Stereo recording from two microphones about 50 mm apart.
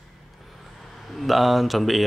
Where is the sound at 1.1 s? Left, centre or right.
Centre.